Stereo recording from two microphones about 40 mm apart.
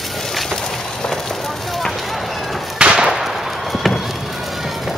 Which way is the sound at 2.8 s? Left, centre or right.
Right.